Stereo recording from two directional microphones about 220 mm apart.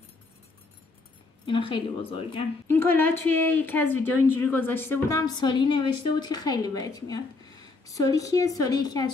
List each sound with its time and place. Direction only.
1.4 s a woman's voice: 20° left (ahead or behind)
2.7 s speech: 10° left (ahead or behind)